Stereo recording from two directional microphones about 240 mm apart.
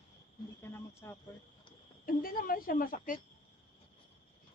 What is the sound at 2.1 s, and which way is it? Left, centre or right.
A woman's voice, left.